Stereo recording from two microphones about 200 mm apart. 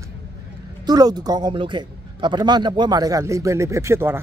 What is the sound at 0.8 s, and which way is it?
Speech, 20° right (ahead or behind).